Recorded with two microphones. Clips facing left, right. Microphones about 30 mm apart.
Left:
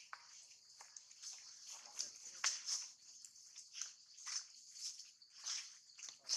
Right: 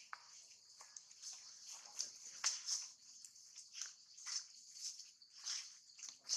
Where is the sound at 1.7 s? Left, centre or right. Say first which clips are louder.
Left 1 dB; centre.